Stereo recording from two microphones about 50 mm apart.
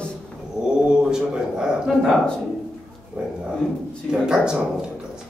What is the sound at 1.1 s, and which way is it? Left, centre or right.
Speech, centre.